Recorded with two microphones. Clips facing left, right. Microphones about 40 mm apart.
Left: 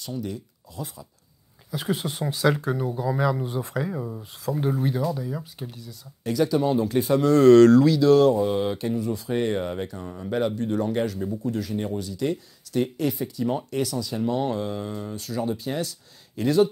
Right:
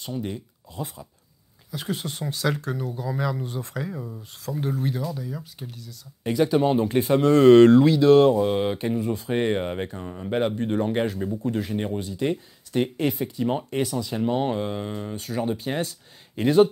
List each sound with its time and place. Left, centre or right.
0.0 s speech: right
1.7 s speech: centre
6.2 s speech: right
10.3 s speech: right